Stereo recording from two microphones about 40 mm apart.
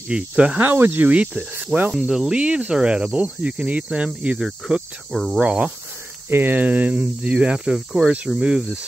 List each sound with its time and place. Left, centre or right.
0.1 s speech: right
0.6 s speech: right
1.1 s speech: right
1.9 s cricket: centre
2.3 s speech: right
5.1 s speech: centre
5.4 s speech: right
6.3 s speech: right